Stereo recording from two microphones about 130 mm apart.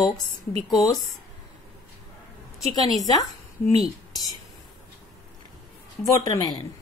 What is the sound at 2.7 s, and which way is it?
Speech, 30° left (ahead or behind).